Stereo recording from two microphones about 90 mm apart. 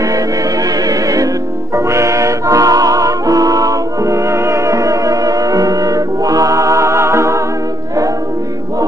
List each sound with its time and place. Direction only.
0.8 s music: 40° right (ahead or behind)